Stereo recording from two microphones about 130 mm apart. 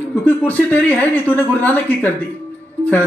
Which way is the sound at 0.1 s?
15° left (ahead or behind).